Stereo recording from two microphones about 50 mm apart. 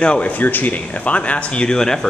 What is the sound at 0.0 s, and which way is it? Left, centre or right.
Speech, left.